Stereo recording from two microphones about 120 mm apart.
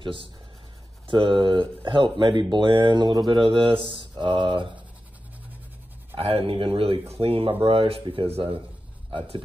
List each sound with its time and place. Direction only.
0.0 s speech: 45° right (ahead or behind)
6.1 s speech: 50° right (ahead or behind)